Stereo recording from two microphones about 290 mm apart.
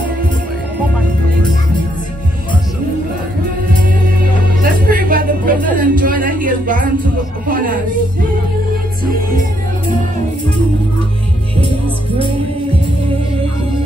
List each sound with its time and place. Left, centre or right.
4.6 s music: right
7.4 s speech: right